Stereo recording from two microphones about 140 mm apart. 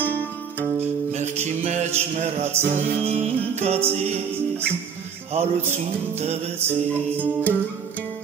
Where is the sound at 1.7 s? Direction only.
55° right (ahead or behind).